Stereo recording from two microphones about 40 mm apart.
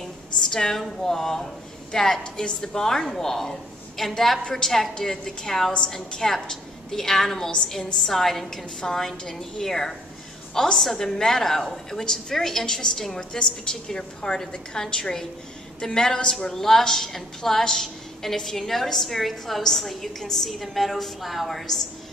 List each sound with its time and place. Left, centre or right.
0.5 s a woman's voice: centre